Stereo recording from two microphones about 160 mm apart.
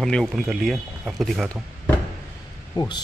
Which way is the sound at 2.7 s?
25° left (ahead or behind).